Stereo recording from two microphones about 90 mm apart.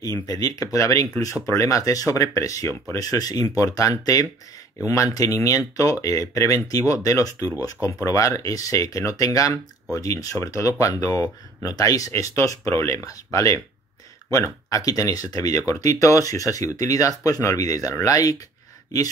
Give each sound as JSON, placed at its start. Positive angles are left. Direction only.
{"t": 0.0, "sound": "speech", "side_deg": 40}